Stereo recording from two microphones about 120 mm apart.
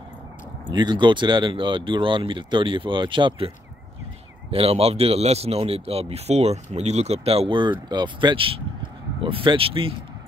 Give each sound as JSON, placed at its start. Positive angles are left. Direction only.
{"t": 0.7, "sound": "speech", "side_deg": -40}
{"t": 4.5, "sound": "speech", "side_deg": -55}